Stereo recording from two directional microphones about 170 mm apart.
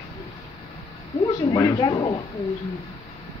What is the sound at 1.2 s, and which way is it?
Speech, 25° left (ahead or behind).